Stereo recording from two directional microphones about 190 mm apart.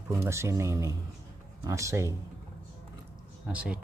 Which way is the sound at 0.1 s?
15° right (ahead or behind).